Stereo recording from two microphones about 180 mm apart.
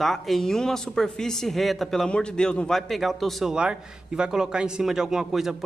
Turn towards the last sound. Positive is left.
turn(degrees=0)  # may be behind; listen again after turning